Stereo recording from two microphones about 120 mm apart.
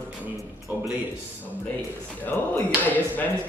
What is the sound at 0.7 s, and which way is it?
Speech, 15° right (ahead or behind).